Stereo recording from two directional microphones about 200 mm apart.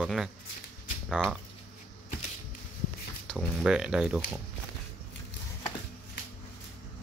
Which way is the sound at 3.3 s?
Centre (ahead or behind).